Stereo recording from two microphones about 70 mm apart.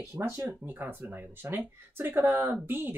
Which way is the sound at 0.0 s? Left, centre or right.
Right.